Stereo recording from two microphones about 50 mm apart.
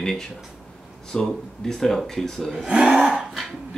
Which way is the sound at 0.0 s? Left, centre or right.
Centre.